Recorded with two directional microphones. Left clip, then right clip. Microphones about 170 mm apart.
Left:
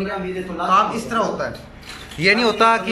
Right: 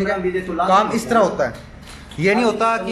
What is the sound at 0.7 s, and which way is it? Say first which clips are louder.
Speech: right 1 dB; 25° right (ahead or behind).